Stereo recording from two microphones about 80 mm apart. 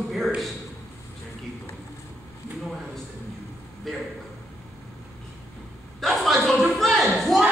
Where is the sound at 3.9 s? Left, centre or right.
Centre.